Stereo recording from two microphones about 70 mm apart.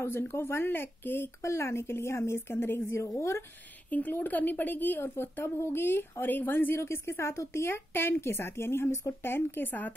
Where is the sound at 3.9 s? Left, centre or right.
Left.